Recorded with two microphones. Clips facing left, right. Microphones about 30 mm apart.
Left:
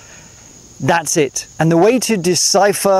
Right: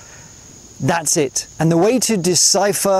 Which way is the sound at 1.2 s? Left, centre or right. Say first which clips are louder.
Left 2 dB; left.